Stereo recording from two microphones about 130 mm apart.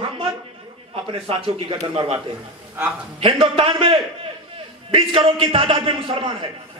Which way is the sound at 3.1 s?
45° right (ahead or behind).